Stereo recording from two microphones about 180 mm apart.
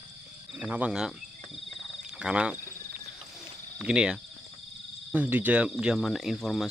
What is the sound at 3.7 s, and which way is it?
Speech, 5° right (ahead or behind).